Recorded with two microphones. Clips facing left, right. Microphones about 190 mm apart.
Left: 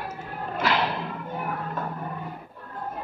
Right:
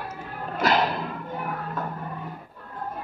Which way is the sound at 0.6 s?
40° right (ahead or behind).